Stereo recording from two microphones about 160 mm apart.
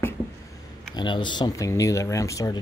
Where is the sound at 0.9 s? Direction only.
30° left (ahead or behind).